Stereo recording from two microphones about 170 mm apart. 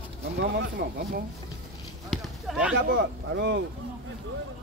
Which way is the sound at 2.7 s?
80° right.